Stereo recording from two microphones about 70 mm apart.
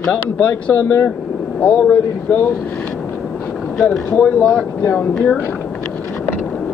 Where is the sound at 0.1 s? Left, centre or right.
Centre.